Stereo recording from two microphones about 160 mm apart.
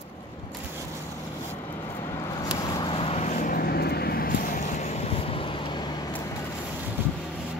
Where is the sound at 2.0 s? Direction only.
25° left (ahead or behind).